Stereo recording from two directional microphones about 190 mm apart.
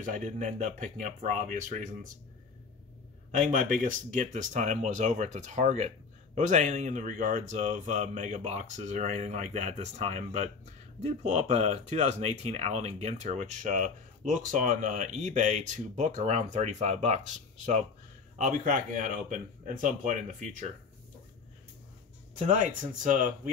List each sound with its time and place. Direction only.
0.0 s speech: 40° right (ahead or behind)
3.3 s speech: 45° right (ahead or behind)
22.4 s speech: 40° right (ahead or behind)